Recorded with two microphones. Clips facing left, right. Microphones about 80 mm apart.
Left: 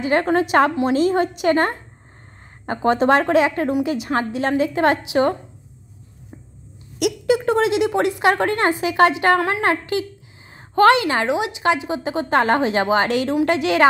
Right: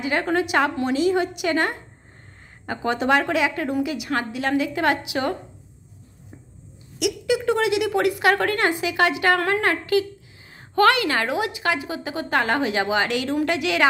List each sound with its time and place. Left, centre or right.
0.0 s a woman's voice: left
7.0 s a woman's voice: left